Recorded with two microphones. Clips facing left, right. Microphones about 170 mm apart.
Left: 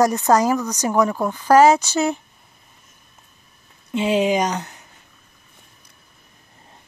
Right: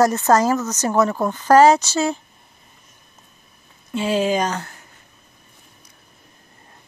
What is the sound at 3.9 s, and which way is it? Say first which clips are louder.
Speech: left 1 dB; 15° left (ahead or behind).